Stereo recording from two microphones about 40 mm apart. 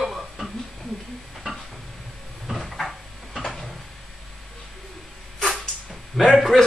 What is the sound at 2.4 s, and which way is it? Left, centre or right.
Cupboard open or close, centre.